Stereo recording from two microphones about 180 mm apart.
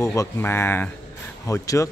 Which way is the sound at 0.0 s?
15° left (ahead or behind).